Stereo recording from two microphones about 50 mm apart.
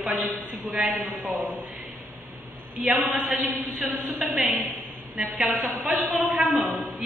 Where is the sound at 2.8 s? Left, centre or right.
Right.